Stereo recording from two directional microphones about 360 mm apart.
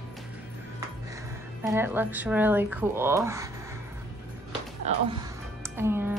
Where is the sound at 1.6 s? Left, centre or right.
Centre.